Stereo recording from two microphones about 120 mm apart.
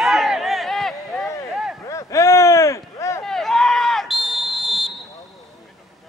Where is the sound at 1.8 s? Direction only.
25° left (ahead or behind).